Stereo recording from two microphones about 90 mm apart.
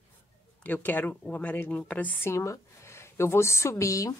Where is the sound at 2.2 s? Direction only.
30° left (ahead or behind).